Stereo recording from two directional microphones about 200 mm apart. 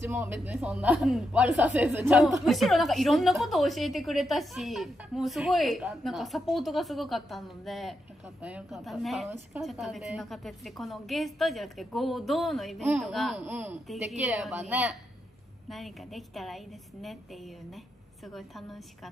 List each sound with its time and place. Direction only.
0.0 s a woman's voice: 10° right (ahead or behind)